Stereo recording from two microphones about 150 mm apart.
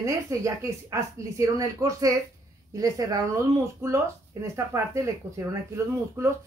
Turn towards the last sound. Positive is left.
turn(degrees=-20)  # may be behind; listen again after turning